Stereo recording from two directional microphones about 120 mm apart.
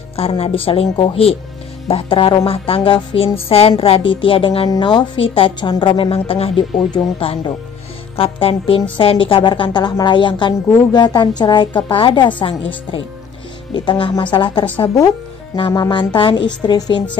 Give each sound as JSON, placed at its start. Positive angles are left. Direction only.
{"t": 0.1, "sound": "a woman's voice", "side_deg": 55}